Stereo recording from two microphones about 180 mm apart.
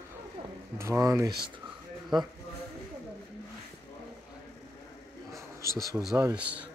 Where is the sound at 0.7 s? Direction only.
15° right (ahead or behind).